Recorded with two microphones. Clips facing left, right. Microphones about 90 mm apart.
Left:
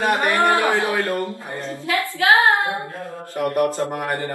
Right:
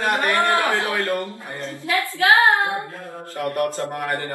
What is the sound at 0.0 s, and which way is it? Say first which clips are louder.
Speech: left 2 dB; 20° left (ahead or behind).